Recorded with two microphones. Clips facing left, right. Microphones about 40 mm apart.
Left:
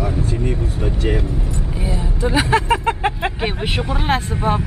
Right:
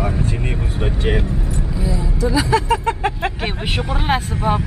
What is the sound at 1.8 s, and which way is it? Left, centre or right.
Speech, left.